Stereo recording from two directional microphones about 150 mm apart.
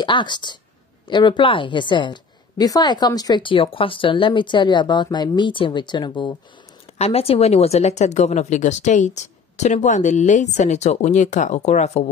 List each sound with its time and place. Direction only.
0.0 s a woman's voice: 30° left (ahead or behind)
7.0 s a woman's voice: 40° left (ahead or behind)